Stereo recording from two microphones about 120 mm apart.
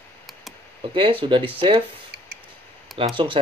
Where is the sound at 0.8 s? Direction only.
45° right (ahead or behind).